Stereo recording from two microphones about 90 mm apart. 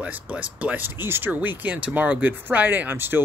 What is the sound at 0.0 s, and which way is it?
Speech, 15° right (ahead or behind).